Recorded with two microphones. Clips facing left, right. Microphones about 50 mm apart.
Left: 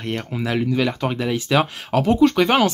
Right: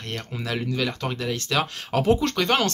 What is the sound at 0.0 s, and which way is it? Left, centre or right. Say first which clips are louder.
Speech: left 7 dB; centre.